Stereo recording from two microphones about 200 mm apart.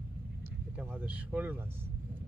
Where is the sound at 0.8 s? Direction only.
5° right (ahead or behind).